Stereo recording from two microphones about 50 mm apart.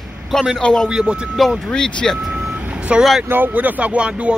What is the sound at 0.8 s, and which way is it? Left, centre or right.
Speech, centre.